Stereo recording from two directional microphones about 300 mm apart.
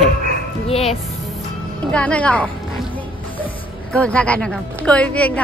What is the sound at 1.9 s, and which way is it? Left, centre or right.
Speech, centre.